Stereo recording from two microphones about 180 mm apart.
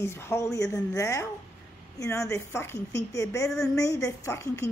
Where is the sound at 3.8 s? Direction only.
15° left (ahead or behind).